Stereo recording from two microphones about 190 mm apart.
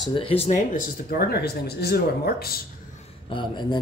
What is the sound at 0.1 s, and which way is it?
Speech, 30° left (ahead or behind).